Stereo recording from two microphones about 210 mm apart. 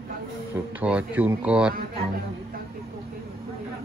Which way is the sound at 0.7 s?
5° right (ahead or behind).